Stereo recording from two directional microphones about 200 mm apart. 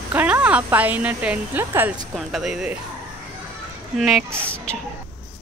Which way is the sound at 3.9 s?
Centre (ahead or behind).